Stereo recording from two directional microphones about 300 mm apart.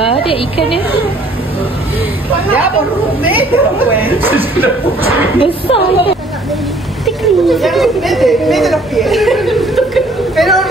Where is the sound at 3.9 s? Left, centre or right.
Centre.